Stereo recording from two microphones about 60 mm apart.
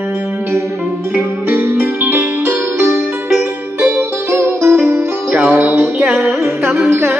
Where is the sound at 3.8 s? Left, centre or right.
Right.